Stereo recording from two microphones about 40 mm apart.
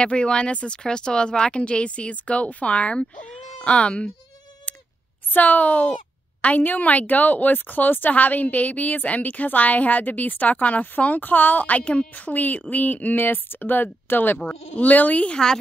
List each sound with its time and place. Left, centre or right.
0.0 s speech: left
5.3 s a woman's voice: left
12.1 s speech: left
14.8 s a woman's voice: left